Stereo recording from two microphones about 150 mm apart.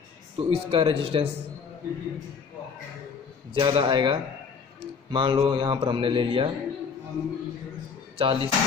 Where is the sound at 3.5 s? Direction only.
35° right (ahead or behind).